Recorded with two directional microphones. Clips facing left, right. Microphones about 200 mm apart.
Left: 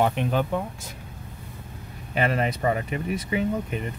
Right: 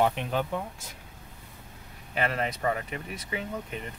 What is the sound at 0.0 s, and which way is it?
Speech, 55° left (ahead or behind).